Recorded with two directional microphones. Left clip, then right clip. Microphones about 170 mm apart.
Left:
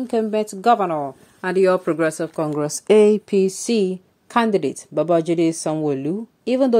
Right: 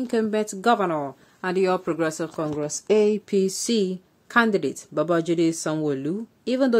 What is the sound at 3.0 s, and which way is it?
A woman's voice, 10° left (ahead or behind).